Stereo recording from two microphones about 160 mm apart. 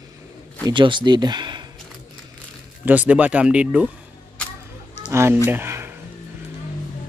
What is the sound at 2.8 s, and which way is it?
Speech, 10° right (ahead or behind).